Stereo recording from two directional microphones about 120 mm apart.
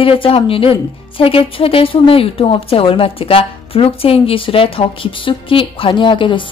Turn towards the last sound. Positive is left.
turn(degrees=45)  # may be behind; listen again after turning